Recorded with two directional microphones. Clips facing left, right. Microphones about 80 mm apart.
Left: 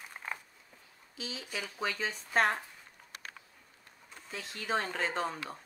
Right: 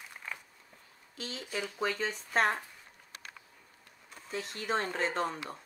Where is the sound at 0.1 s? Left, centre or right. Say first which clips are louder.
Left 3 dB; left.